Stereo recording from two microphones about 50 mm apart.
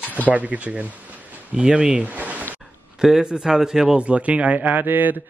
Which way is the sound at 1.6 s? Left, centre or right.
Centre.